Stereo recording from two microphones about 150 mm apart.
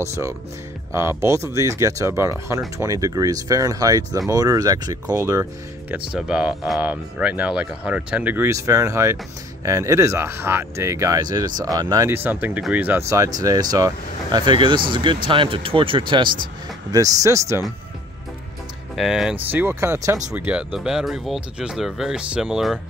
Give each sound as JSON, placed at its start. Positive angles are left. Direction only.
{"t": 0.0, "sound": "speech", "side_deg": -20}
{"t": 5.9, "sound": "speech", "side_deg": -5}
{"t": 12.1, "sound": "speech", "side_deg": -15}
{"t": 16.9, "sound": "speech", "side_deg": -25}
{"t": 18.9, "sound": "speech", "side_deg": 0}